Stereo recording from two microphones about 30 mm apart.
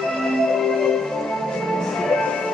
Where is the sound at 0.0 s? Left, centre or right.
Centre.